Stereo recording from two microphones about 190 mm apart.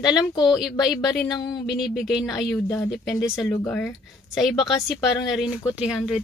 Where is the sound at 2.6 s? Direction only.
15° left (ahead or behind).